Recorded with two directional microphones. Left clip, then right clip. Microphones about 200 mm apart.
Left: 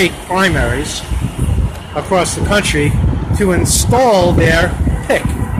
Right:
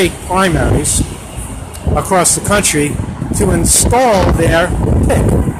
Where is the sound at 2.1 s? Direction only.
20° right (ahead or behind).